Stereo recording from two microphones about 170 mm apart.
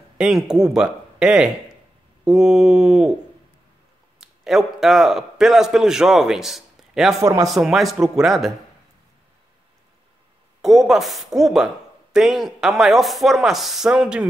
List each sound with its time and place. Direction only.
0.2 s speech: 5° right (ahead or behind)
4.2 s a man's voice: centre (ahead or behind)
7.2 s a man's voice: 20° right (ahead or behind)
7.4 s speech: centre (ahead or behind)
10.6 s speech: centre (ahead or behind)